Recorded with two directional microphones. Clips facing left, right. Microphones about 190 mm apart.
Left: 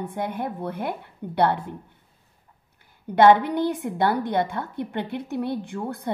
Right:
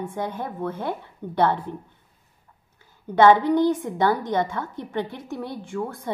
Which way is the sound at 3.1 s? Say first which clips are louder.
Right 1 dB; 15° left (ahead or behind).